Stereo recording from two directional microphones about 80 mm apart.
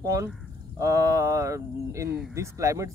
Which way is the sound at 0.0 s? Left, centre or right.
Right.